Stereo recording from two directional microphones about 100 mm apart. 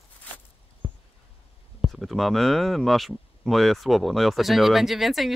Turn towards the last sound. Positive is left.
turn(degrees=0)  # may be behind; listen again after turning